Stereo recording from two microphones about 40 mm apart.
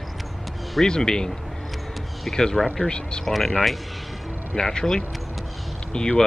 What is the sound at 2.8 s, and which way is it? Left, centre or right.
Speech, left.